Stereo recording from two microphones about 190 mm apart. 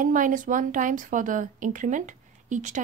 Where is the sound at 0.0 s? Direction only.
45° right (ahead or behind).